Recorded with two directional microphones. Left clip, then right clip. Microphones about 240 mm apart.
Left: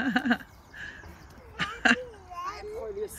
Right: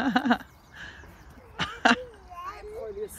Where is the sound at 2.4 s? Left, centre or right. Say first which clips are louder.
Left 2 dB; left.